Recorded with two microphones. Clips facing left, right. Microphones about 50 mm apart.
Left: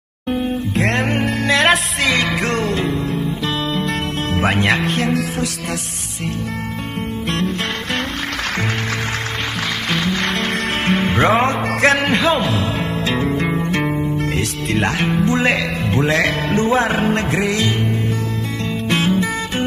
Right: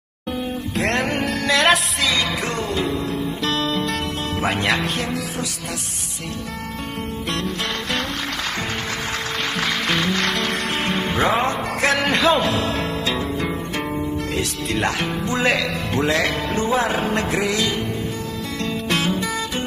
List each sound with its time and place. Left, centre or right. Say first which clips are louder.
0.9 s music: left 3 dB; left
2.0 s music: left 5 dB; left
2.8 s music: left 2 dB; left
3.4 s music: right 1 dB; centre
4.4 s music: left 4 dB; left
9.8 s music: left 2 dB; centre
10.9 s music: left 5 dB; left
12.0 s music: left 1 dB; centre
13.6 s music: left 5 dB; left
16.5 s music: left 4 dB; left
18.9 s music: left 4 dB; centre